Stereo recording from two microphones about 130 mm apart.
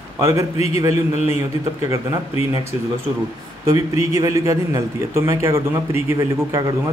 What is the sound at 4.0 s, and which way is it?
A man's voice, 25° right (ahead or behind).